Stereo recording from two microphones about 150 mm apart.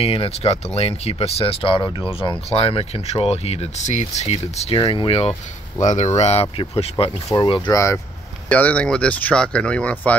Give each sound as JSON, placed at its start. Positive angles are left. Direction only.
{"t": 0.0, "sound": "speech", "side_deg": 40}
{"t": 2.2, "sound": "speech", "side_deg": 40}
{"t": 4.7, "sound": "speech", "side_deg": 30}
{"t": 5.9, "sound": "speech", "side_deg": 50}
{"t": 8.5, "sound": "speech", "side_deg": 10}